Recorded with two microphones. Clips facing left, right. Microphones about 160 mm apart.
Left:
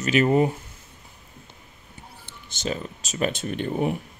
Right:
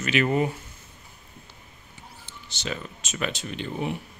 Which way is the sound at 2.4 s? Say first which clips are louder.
Left 4 dB; 45° left (ahead or behind).